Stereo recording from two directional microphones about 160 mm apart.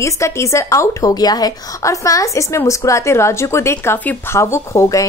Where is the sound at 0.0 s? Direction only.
20° left (ahead or behind).